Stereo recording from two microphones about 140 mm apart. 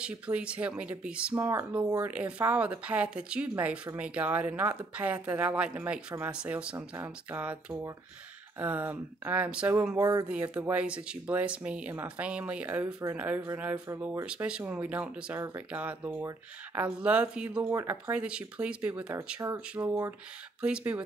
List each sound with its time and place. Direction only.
0.0 s speech: 10° right (ahead or behind)
9.9 s speech: 25° right (ahead or behind)
10.2 s speech: 10° right (ahead or behind)